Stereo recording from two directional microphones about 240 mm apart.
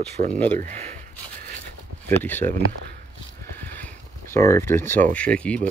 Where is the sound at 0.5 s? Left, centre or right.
Right.